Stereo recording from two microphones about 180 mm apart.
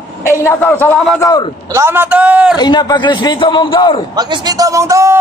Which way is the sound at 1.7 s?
15° right (ahead or behind).